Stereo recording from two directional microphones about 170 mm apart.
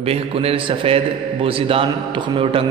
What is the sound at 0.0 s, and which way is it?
A man's voice, 35° right (ahead or behind).